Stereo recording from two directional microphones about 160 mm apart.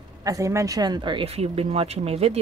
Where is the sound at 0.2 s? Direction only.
20° right (ahead or behind).